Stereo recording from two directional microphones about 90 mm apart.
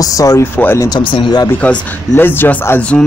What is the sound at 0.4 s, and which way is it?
Speech, 25° left (ahead or behind).